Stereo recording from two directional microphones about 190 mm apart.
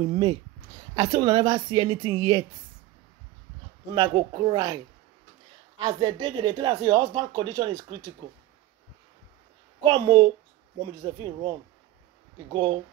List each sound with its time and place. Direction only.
0.1 s speech: 25° right (ahead or behind)
3.9 s speech: 25° right (ahead or behind)
5.9 s speech: 25° right (ahead or behind)
9.8 s speech: 25° right (ahead or behind)
12.5 s speech: 25° right (ahead or behind)